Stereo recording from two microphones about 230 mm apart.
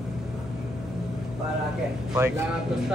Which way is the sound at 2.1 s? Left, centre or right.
Centre.